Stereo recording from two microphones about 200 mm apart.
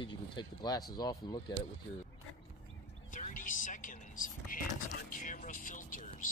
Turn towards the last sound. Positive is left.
turn(degrees=40)  # may be behind; listen again after turning